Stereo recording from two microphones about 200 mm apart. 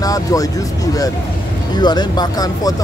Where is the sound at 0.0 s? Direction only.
15° left (ahead or behind).